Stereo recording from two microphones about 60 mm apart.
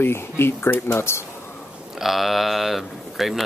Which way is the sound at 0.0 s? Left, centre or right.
Left.